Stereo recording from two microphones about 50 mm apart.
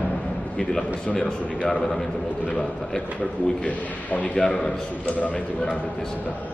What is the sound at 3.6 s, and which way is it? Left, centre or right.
Speech, left.